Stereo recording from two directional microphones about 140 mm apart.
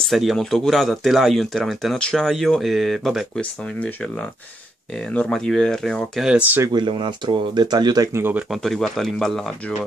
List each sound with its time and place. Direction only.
0.1 s speech: centre (ahead or behind)
5.1 s speech: 5° left (ahead or behind); by 6.7 s 15° right (ahead or behind)
6.7 s speech: 35° right (ahead or behind); by 8.5 s 15° right (ahead or behind)
8.5 s speech: centre (ahead or behind)